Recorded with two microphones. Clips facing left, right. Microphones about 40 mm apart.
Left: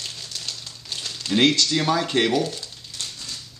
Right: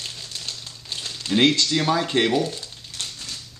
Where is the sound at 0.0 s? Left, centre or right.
Centre.